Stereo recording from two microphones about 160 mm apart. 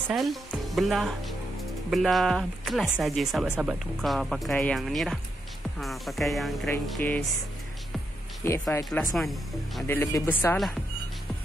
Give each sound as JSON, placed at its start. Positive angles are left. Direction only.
{"t": 0.1, "sound": "speech", "side_deg": 0}
{"t": 8.7, "sound": "speech", "side_deg": 15}
{"t": 9.1, "sound": "speech", "side_deg": 0}
{"t": 9.8, "sound": "speech", "side_deg": 15}